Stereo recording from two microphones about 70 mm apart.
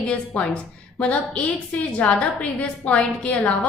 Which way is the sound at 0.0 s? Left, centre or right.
Centre.